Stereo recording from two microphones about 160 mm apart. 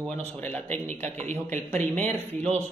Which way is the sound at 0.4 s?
10° left (ahead or behind).